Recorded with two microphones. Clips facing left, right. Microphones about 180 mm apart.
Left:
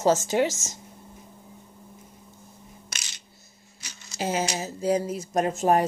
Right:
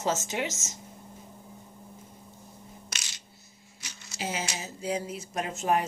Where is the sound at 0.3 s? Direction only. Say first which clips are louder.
Left 9 dB; 35° left (ahead or behind).